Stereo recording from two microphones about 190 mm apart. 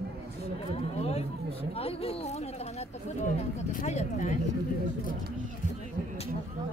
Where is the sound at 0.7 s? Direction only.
35° left (ahead or behind).